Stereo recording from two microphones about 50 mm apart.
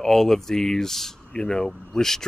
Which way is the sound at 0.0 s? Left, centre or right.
Centre.